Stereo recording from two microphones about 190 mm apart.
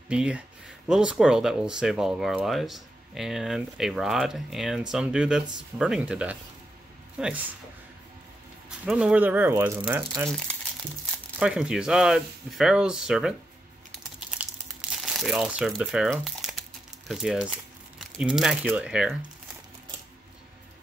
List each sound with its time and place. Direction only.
0.1 s speech: 5° right (ahead or behind)
8.6 s speech: 5° right (ahead or behind)
10.2 s speech: 5° left (ahead or behind)
14.4 s crumpling: centre (ahead or behind)
17.1 s speech: centre (ahead or behind)